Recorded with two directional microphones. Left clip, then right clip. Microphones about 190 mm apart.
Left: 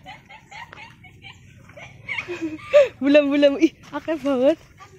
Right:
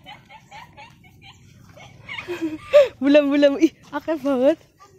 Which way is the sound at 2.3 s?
15° right (ahead or behind).